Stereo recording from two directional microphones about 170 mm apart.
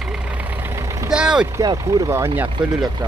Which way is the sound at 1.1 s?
5° right (ahead or behind).